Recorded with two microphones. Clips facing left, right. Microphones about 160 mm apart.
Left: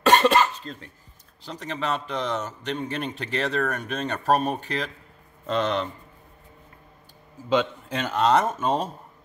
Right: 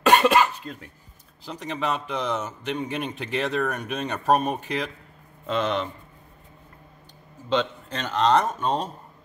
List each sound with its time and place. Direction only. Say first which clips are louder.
0.0 s cough: even; 10° right (ahead or behind)
1.4 s a man's voice: right 1 dB; 5° right (ahead or behind)
7.4 s a man's voice: left 2 dB; 10° left (ahead or behind)